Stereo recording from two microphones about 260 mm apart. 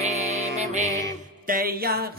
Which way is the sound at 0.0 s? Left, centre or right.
Right.